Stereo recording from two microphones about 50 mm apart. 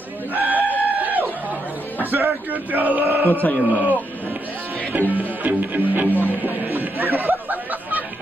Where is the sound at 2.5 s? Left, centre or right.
Right.